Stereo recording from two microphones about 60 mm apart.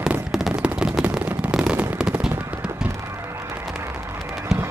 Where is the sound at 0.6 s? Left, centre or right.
Centre.